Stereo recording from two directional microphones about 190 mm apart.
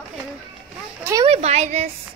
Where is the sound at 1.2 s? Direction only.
30° right (ahead or behind).